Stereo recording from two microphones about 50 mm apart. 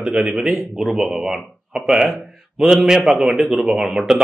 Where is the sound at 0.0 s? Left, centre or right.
Centre.